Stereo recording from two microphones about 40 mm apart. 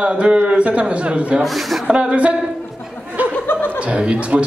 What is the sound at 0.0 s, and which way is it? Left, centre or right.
Speech, right.